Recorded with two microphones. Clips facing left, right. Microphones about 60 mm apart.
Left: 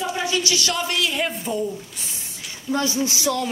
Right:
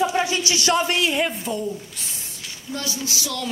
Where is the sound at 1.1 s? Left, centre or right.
Centre.